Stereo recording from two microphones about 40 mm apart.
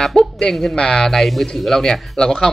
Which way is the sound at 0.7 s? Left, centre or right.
Left.